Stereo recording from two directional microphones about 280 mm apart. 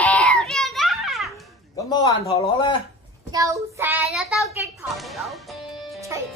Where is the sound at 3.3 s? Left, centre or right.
Centre.